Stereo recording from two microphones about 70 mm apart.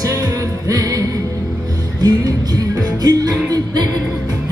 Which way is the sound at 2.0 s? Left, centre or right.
Right.